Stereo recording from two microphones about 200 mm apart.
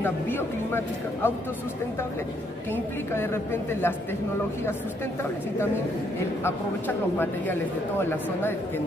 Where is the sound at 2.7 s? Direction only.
10° left (ahead or behind).